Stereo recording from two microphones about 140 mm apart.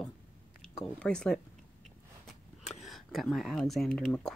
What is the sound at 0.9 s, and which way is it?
Speech, 5° left (ahead or behind).